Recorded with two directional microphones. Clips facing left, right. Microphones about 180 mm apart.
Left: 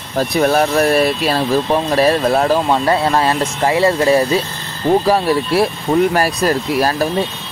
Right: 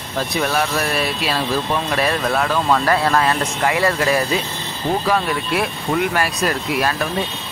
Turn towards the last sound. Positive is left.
turn(degrees=35)  # may be behind; listen again after turning